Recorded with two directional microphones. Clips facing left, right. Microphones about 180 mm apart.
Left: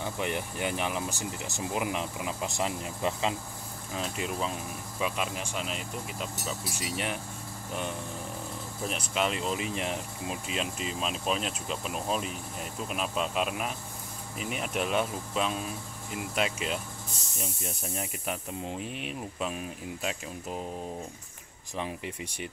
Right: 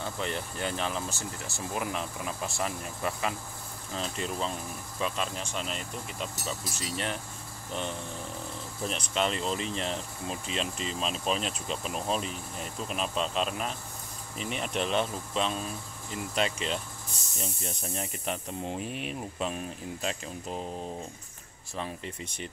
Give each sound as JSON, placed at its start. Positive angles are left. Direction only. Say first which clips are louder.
{"t": 0.0, "sound": "speech", "louder": "left 2 dB", "side_deg": 15}
{"t": 3.9, "sound": "speech", "louder": "even", "side_deg": 5}
{"t": 8.8, "sound": "speech", "louder": "even", "side_deg": 5}
{"t": 21.7, "sound": "speech", "louder": "left 1 dB", "side_deg": 15}